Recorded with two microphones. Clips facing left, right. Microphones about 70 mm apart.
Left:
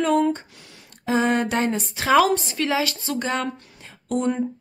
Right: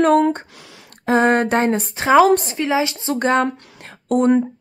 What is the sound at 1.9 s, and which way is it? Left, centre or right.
A woman's voice, right.